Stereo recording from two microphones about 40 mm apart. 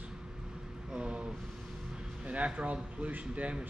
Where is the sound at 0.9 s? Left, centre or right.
Right.